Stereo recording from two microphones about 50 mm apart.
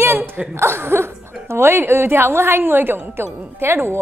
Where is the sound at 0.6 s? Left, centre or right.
Right.